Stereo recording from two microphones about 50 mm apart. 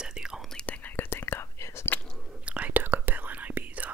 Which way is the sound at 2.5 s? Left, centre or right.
Right.